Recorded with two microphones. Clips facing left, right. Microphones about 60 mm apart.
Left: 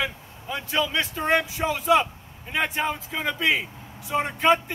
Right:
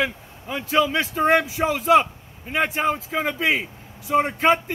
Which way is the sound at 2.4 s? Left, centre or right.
Right.